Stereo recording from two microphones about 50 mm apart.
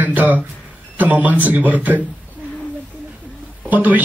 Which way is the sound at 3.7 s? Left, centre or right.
Right.